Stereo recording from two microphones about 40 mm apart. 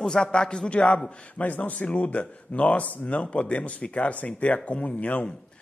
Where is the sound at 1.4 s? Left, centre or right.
Left.